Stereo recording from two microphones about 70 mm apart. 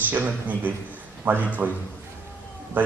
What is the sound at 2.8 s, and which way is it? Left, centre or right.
Speech, right.